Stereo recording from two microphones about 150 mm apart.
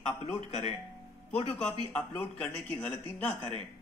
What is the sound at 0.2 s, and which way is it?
Speech, 40° left (ahead or behind).